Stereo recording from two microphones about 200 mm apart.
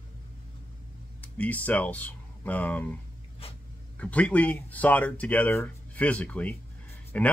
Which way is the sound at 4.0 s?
5° left (ahead or behind).